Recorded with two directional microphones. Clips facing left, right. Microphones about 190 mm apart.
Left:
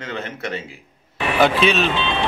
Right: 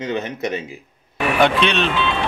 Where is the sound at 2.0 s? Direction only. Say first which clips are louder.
Right 1 dB; 25° left (ahead or behind).